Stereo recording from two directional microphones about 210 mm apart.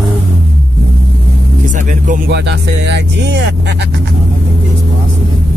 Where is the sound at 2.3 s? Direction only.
55° right (ahead or behind).